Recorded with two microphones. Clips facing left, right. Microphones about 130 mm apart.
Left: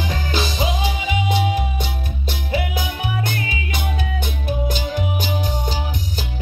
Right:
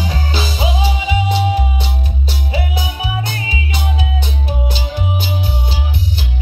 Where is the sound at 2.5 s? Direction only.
50° left (ahead or behind).